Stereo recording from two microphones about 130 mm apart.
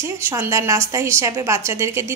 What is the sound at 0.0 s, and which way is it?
A woman's voice, 20° right (ahead or behind).